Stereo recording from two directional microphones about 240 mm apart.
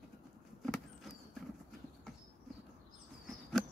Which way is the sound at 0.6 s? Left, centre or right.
Centre.